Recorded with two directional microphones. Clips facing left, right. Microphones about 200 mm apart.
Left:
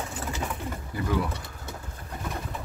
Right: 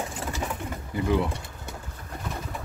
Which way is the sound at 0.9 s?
25° right (ahead or behind).